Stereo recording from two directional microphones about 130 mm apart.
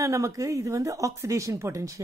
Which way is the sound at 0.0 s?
25° right (ahead or behind).